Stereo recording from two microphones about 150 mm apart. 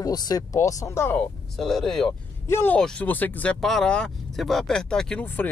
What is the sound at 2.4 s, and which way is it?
Speech, 15° left (ahead or behind).